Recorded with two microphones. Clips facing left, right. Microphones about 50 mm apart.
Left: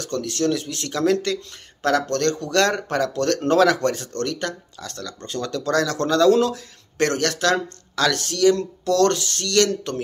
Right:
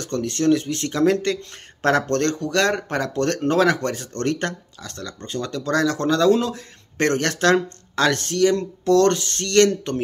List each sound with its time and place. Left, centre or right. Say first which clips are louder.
0.0 s speech: right 2 dB; right
1.8 s speech: right 1 dB; right; by 4.1 s centre
4.3 s speech: right 8 dB; right
4.7 s speech: even; centre